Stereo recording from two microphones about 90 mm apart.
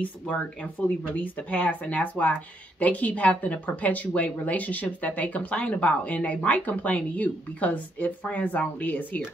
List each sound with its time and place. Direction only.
0.0 s speech: 15° left (ahead or behind)